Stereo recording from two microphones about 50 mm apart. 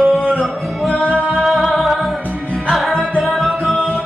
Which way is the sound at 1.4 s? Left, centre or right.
Centre.